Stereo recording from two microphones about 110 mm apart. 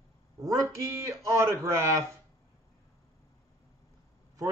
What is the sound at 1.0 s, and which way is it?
A man's voice, 25° right (ahead or behind).